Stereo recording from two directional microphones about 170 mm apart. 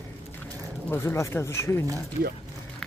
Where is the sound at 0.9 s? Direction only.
15° left (ahead or behind).